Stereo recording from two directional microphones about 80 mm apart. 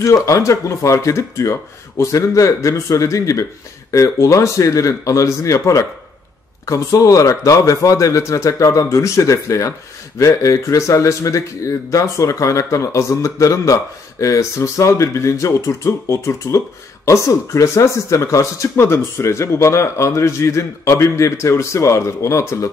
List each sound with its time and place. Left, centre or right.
0.0 s speech: left